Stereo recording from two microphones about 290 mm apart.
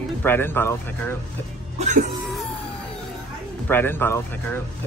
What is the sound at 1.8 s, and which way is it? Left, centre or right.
Cough, right.